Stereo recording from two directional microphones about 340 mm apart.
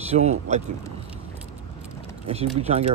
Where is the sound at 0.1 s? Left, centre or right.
Centre.